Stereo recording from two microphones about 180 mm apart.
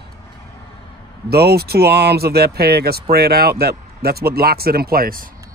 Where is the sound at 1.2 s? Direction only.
60° right (ahead or behind).